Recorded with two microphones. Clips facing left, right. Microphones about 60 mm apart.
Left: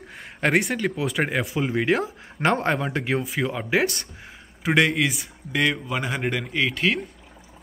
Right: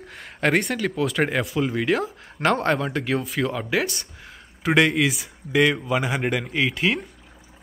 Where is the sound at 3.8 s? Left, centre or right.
Left.